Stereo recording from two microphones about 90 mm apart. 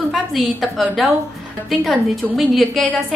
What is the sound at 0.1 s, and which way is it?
A woman's voice, centre (ahead or behind).